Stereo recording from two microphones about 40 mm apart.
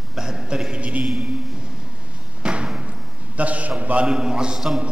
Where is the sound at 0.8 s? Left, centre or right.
Right.